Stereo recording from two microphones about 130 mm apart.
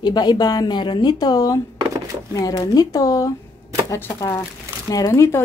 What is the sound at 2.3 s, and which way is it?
Speech, 30° left (ahead or behind).